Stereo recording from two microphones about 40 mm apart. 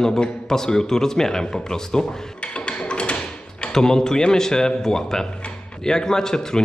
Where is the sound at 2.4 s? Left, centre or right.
Left.